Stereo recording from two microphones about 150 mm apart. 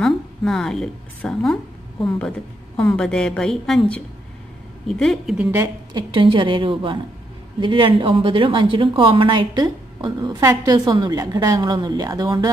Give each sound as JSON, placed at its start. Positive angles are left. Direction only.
{"t": 0.0, "sound": "a woman's voice", "side_deg": 5}
{"t": 5.4, "sound": "a woman's voice", "side_deg": -10}
{"t": 5.9, "sound": "a woman's voice", "side_deg": -35}